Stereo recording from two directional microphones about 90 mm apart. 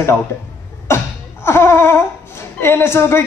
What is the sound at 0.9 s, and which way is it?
Cough, 30° left (ahead or behind).